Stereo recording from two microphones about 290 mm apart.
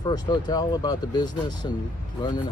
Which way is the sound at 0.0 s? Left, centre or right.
Centre.